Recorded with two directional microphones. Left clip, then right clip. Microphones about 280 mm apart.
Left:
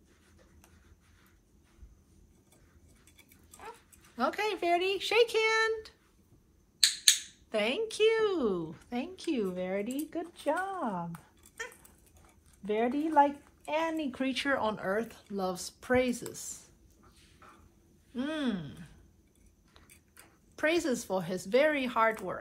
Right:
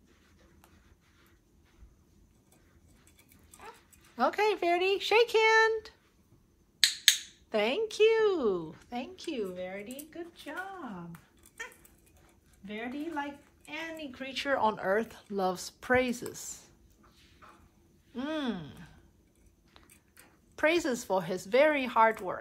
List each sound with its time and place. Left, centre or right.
3.6 s dog: centre
4.2 s a woman's voice: right
7.4 s a woman's voice: centre
12.6 s a woman's voice: centre; by 16.7 s right
18.1 s a woman's voice: centre
20.5 s a woman's voice: right